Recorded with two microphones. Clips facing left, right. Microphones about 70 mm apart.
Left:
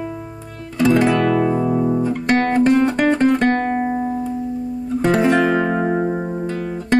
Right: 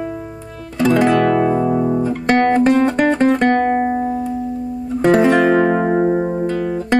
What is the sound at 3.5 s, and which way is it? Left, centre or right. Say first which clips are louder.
Music: right 4 dB; centre.